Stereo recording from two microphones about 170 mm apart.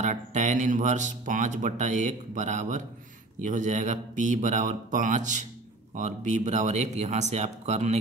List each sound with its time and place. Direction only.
0.0 s speech: 45° right (ahead or behind)